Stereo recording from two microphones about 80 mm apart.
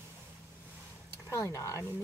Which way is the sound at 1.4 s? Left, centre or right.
Left.